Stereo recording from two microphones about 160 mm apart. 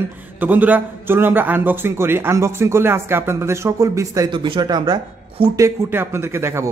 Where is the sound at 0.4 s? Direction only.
10° right (ahead or behind); by 5.7 s 25° right (ahead or behind).